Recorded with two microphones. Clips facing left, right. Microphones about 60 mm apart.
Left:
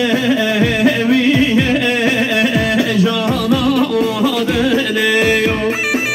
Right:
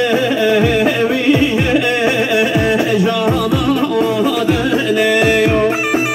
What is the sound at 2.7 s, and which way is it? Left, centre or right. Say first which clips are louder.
Music: right 1 dB; left.